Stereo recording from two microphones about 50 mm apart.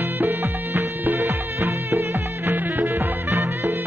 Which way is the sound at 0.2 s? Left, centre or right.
Right.